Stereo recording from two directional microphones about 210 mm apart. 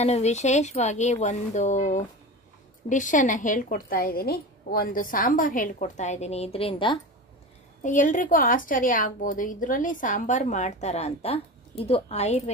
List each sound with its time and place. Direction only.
0.0 s a woman's voice: 30° left (ahead or behind)
7.8 s a woman's voice: 35° left (ahead or behind)